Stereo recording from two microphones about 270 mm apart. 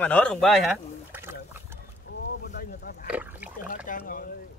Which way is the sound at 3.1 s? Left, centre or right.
Centre.